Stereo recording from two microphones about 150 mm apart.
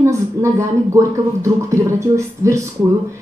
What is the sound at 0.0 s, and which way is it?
Speech, 20° right (ahead or behind).